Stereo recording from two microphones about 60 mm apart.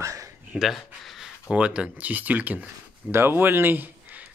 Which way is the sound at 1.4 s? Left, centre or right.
Centre.